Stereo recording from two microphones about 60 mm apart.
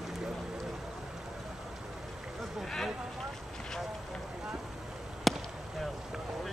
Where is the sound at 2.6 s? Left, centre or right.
Centre.